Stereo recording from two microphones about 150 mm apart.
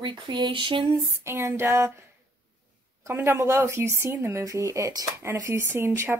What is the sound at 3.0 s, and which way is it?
Speech, 15° right (ahead or behind).